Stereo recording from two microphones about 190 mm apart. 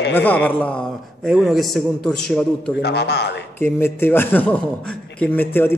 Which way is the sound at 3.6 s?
10° left (ahead or behind).